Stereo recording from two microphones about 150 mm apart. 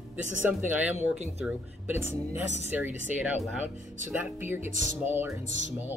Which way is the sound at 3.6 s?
15° right (ahead or behind).